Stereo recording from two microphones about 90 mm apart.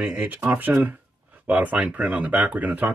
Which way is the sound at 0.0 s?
10° right (ahead or behind).